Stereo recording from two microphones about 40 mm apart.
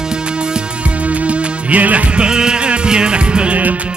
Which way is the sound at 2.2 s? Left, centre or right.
Centre.